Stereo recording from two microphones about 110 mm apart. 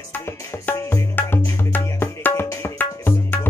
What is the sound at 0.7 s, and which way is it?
Music, 30° left (ahead or behind).